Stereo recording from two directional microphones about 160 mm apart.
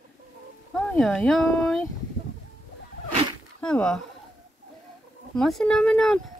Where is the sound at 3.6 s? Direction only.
5° left (ahead or behind).